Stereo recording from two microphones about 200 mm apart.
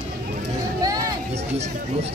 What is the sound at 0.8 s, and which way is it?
Speech, 20° right (ahead or behind).